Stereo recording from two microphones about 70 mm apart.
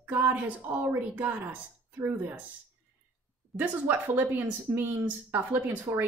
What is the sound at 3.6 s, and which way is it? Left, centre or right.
Speech, right.